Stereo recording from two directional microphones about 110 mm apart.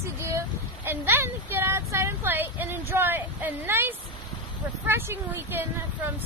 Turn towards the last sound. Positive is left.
turn(degrees=-20)  # may be behind; listen again after turning